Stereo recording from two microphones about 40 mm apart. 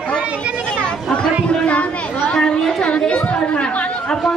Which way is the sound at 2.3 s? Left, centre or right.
Centre.